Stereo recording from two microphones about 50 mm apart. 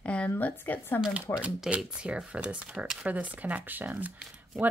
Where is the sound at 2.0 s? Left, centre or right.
Centre.